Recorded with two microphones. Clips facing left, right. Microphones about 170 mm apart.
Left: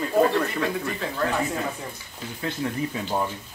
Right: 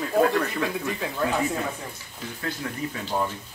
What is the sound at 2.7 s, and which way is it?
Speech, 25° left (ahead or behind).